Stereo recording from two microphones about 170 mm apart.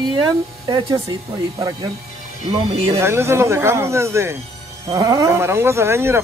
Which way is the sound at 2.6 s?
35° right (ahead or behind).